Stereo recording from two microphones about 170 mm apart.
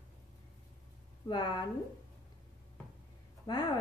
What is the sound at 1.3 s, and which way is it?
Speech, 25° left (ahead or behind).